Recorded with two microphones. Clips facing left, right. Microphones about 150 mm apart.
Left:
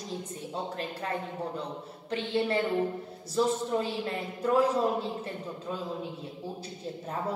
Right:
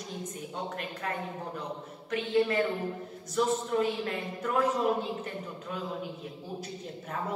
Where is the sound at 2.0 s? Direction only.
30° left (ahead or behind).